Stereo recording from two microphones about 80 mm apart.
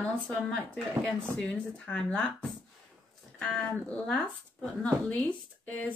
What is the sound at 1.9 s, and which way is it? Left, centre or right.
Speech, centre.